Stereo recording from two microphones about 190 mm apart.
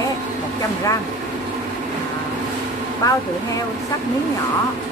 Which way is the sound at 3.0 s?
20° left (ahead or behind).